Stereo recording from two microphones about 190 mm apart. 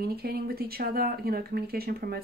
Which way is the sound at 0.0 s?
55° right (ahead or behind).